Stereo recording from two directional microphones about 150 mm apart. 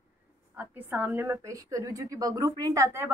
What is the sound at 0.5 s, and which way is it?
A woman's voice, 10° right (ahead or behind).